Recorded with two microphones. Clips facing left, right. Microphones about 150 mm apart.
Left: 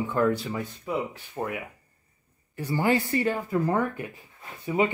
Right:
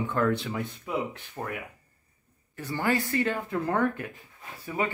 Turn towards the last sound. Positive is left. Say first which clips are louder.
# left 5 dB
turn(degrees=20)  # may be behind; listen again after turning